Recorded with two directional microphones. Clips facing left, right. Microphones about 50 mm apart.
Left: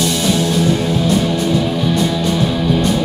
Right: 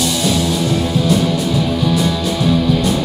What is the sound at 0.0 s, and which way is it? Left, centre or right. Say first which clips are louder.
Music: left 1 dB; centre.